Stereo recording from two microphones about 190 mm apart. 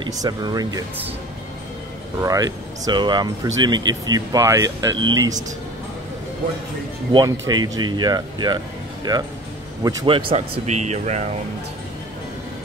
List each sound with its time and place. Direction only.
0.0 s speech: 20° right (ahead or behind)
2.2 s speech: 20° right (ahead or behind)
7.1 s speech: 20° right (ahead or behind); by 11.2 s 35° right (ahead or behind)